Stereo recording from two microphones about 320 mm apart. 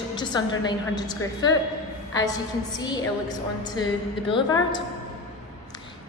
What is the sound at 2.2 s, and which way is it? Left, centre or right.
A woman's voice, centre.